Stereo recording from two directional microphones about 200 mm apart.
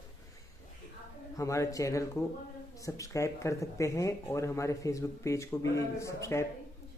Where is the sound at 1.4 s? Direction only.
15° left (ahead or behind).